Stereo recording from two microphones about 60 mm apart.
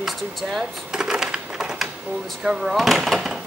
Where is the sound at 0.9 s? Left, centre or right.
Centre.